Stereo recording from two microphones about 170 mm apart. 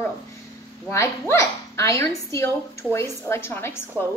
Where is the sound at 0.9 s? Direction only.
15° left (ahead or behind).